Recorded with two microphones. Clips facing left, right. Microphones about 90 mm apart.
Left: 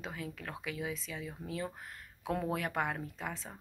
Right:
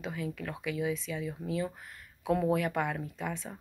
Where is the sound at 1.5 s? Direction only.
35° left (ahead or behind).